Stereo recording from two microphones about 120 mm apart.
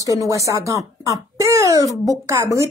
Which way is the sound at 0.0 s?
30° right (ahead or behind).